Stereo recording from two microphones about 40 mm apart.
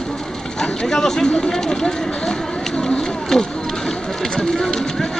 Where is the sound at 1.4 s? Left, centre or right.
Centre.